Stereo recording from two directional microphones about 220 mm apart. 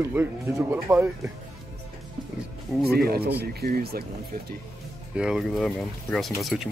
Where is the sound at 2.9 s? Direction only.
45° right (ahead or behind).